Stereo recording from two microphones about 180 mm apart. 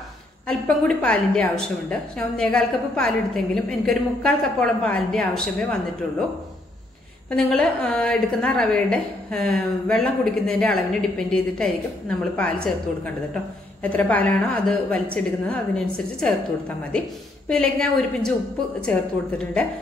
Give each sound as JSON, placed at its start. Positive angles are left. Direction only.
{"t": 0.5, "sound": "a woman's voice", "side_deg": 5}
{"t": 7.2, "sound": "a woman's voice", "side_deg": 5}
{"t": 17.5, "sound": "a woman's voice", "side_deg": 5}